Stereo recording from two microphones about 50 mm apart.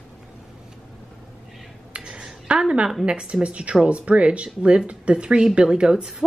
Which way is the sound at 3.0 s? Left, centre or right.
Right.